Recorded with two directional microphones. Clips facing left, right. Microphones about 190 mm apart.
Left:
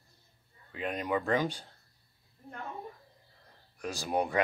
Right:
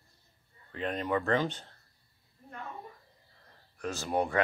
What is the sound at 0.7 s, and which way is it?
Speech, 10° left (ahead or behind).